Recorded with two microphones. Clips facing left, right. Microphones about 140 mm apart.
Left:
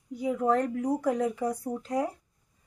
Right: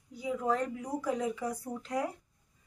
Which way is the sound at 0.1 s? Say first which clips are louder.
Left 6 dB; 55° left (ahead or behind).